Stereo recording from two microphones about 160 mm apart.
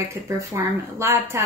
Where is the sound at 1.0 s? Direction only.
15° right (ahead or behind).